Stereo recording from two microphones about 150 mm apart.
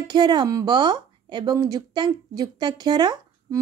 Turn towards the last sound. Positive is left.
turn(degrees=-30)  # may be behind; listen again after turning